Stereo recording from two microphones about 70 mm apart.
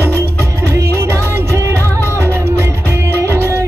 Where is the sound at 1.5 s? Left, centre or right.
Right.